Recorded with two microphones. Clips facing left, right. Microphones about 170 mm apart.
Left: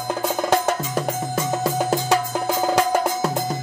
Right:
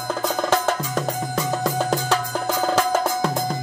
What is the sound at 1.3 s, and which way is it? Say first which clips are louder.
Music: left 1 dB; 5° left (ahead or behind).